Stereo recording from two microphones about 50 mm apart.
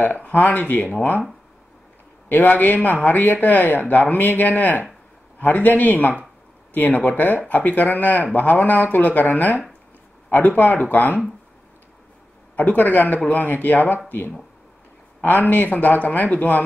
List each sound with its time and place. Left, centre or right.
0.0 s speech: left
2.2 s speech: left
12.5 s speech: left
15.5 s speech: left